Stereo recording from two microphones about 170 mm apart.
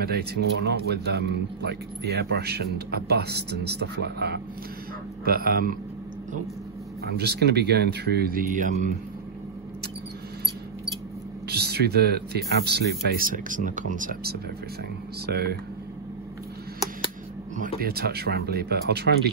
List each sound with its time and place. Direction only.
0.0 s a man's voice: 70° right (ahead or behind)
5.2 s speech: 60° right (ahead or behind)
7.1 s a man's voice: 75° right (ahead or behind); by 8.7 s 50° right (ahead or behind)
11.4 s a man's voice: 70° right (ahead or behind); by 14.3 s 50° right (ahead or behind)
15.2 s a man's voice: 70° right (ahead or behind)
17.7 s a man's voice: 65° right (ahead or behind)